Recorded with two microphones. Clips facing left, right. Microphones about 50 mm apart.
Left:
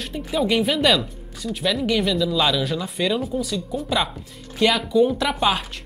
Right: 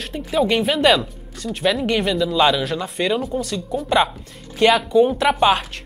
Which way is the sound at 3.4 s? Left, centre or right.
Right.